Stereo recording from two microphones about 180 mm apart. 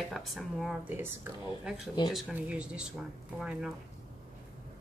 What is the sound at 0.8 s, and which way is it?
Speech, 10° right (ahead or behind).